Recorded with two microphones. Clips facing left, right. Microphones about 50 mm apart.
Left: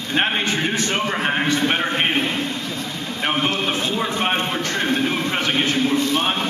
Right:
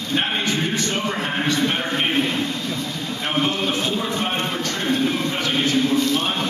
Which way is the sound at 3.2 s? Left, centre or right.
Left.